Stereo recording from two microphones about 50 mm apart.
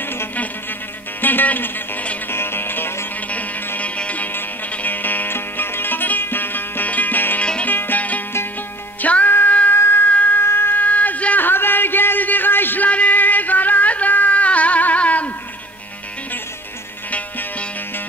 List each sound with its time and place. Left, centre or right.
1.2 s music: left
2.3 s music: left
3.3 s music: left
4.3 s music: left
9.8 s siren: left
10.0 s siren: left
10.4 s music: left
10.8 s a sound: left
11.4 s a sound: left
12.9 s music: left
17.1 s music: left